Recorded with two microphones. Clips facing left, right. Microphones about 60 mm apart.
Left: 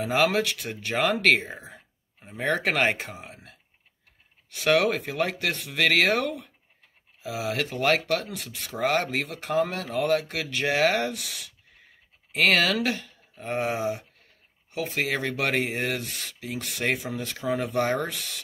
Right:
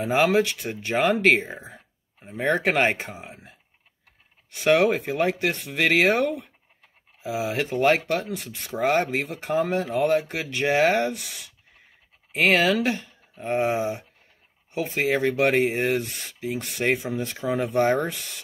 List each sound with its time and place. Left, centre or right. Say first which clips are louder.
0.0 s speech: right 3 dB; centre
1.2 s a sound: right 2 dB; centre
2.5 s speech: right 2 dB; centre
4.6 s speech: right 3 dB; centre
7.2 s speech: right 3 dB; centre
12.4 s speech: right 2 dB; centre